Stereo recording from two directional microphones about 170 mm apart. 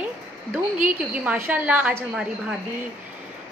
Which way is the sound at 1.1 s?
10° right (ahead or behind).